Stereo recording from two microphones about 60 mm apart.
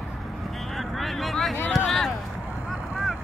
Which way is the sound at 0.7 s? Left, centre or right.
Centre.